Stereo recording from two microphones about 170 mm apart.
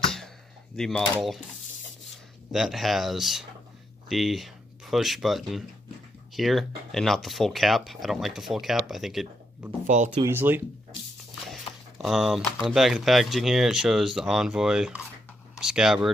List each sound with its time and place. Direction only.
0.7 s speech: 5° left (ahead or behind)
2.5 s speech: centre (ahead or behind)
9.8 s speech: 45° right (ahead or behind)
10.2 s speech: 10° right (ahead or behind)
11.7 s a sound: 35° left (ahead or behind)
12.0 s speech: centre (ahead or behind)